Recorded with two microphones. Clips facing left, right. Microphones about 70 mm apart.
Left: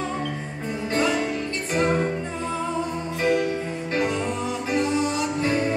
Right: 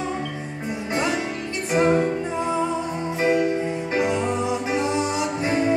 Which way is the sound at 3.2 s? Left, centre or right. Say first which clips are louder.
Right 2 dB; centre.